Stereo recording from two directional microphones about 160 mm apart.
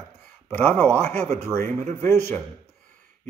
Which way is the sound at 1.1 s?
45° right (ahead or behind).